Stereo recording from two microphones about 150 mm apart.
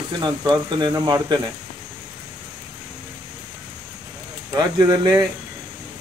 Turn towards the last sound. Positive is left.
turn(degrees=-25)  # may be behind; listen again after turning